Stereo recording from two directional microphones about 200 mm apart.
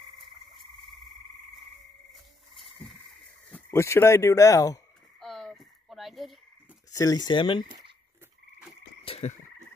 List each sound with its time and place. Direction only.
2.5 s frog: centre (ahead or behind)
3.4 s speech: 10° left (ahead or behind)
5.2 s a sound: centre (ahead or behind)
6.9 s speech: 15° left (ahead or behind)
9.0 s frog: 30° left (ahead or behind)